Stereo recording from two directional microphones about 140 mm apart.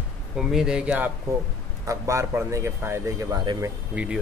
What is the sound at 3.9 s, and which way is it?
Speech, 5° right (ahead or behind).